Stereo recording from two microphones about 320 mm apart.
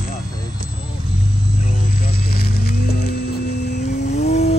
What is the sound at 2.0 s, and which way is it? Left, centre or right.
Music, left.